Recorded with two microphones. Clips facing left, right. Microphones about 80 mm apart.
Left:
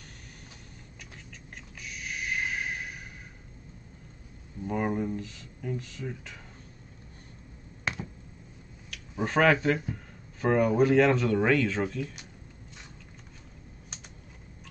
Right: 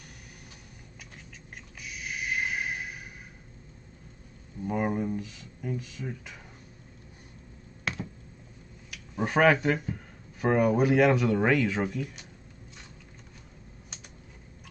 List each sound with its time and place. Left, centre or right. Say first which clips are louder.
1.8 s a sound: right 1 dB; centre
4.6 s speech: right 1 dB; centre
9.2 s speech: right 1 dB; centre